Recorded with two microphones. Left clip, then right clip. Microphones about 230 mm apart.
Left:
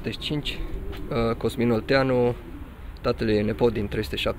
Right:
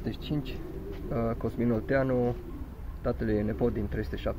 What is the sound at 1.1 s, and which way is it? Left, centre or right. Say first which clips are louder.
Speech: left 7 dB; left.